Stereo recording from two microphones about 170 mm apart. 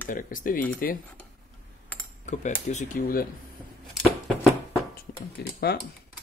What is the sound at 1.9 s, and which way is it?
Computer keyboard, 10° left (ahead or behind).